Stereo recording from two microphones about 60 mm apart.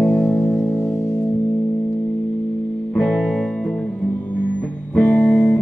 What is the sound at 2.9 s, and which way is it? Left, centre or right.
Music, centre.